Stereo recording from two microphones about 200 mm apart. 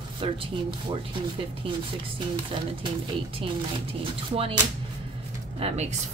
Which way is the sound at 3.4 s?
30° right (ahead or behind).